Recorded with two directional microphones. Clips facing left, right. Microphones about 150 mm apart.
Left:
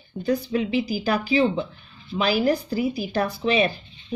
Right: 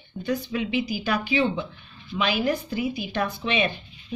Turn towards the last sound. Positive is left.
turn(degrees=35)  # may be behind; listen again after turning